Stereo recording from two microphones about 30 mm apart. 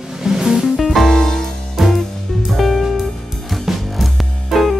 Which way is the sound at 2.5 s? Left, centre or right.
Centre.